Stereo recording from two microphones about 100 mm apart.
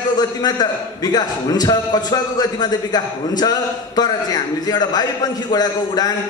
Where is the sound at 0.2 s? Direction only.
45° left (ahead or behind).